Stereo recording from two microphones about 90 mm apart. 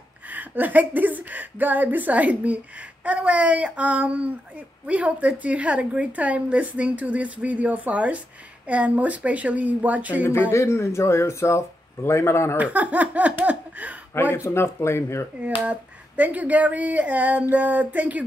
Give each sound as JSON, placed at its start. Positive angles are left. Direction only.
{"t": 0.3, "sound": "a woman's voice", "side_deg": -20}
{"t": 10.5, "sound": "speech", "side_deg": 30}
{"t": 12.5, "sound": "a woman's voice", "side_deg": -15}
{"t": 14.3, "sound": "speech", "side_deg": 30}
{"t": 15.6, "sound": "a woman's voice", "side_deg": -15}